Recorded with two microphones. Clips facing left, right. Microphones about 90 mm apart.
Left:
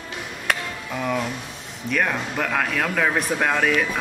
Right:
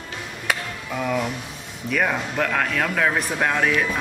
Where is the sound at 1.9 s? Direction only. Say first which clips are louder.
Right 1 dB; centre (ahead or behind).